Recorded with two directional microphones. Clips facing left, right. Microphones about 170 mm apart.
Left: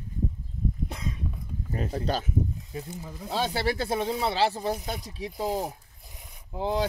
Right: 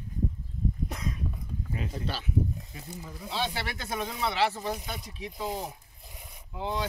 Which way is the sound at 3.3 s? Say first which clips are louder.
Left 6 dB; 40° left (ahead or behind).